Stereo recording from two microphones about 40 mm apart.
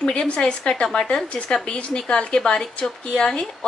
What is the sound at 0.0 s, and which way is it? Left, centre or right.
Speech, left.